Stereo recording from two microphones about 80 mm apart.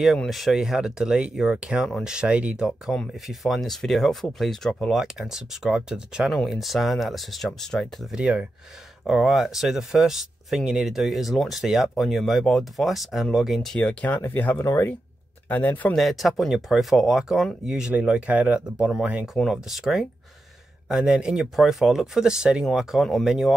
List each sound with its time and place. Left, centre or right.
0.3 s speech: centre
2.9 s speech: centre
8.1 s speech: centre
13.7 s speech: centre
14.6 s speech: left
15.4 s speech: left
15.9 s speech: centre
19.3 s speech: centre